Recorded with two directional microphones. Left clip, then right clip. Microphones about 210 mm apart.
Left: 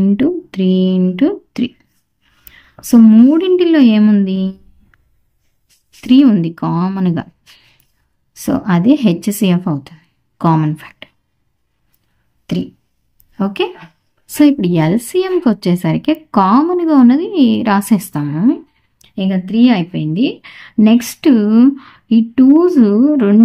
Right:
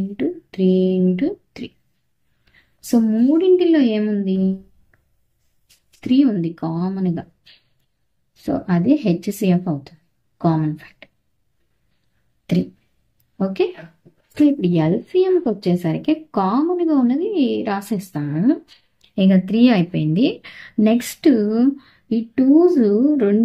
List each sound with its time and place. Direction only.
0.2 s speech: 35° left (ahead or behind)
2.9 s speech: 35° left (ahead or behind)
8.5 s a woman's voice: 30° left (ahead or behind)
13.4 s speech: 35° left (ahead or behind)
18.9 s speech: centre (ahead or behind); by 23.3 s 25° left (ahead or behind)